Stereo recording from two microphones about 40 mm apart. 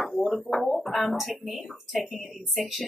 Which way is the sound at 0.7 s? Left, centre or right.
Centre.